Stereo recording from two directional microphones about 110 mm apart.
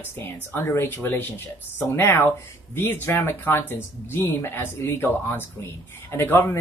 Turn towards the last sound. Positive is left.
turn(degrees=20)  # may be behind; listen again after turning